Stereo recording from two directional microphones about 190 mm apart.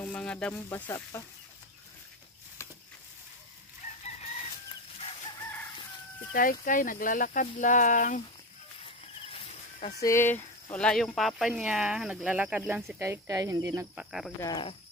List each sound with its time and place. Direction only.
0.0 s speech: 5° left (ahead or behind)
6.3 s speech: 45° left (ahead or behind)
8.8 s a sound: 30° left (ahead or behind)
10.0 s speech: 10° left (ahead or behind); by 14.0 s 15° right (ahead or behind)
14.4 s cricket: 25° left (ahead or behind)